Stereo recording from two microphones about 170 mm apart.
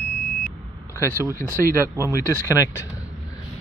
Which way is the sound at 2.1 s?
15° left (ahead or behind).